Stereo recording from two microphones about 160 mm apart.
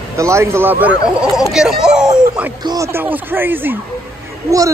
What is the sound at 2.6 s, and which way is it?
Speech, 20° right (ahead or behind).